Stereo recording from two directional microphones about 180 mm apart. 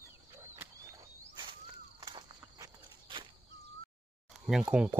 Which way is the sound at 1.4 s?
25° right (ahead or behind).